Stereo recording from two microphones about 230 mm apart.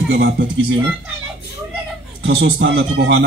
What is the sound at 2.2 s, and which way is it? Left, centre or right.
Speech, right.